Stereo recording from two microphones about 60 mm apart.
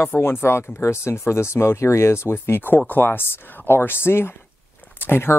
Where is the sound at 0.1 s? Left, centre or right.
Left.